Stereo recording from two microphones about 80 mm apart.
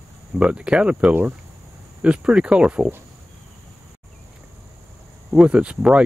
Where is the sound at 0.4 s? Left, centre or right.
Centre.